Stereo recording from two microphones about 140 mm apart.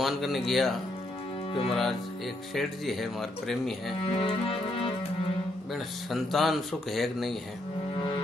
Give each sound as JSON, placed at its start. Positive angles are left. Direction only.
{"t": 0.0, "sound": "speech", "side_deg": 0}
{"t": 4.0, "sound": "music", "side_deg": 40}
{"t": 6.0, "sound": "speech", "side_deg": 0}